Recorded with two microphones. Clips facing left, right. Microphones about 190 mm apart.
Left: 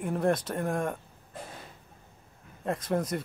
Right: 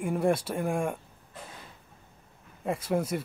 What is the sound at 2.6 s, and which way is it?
Speech, 5° right (ahead or behind).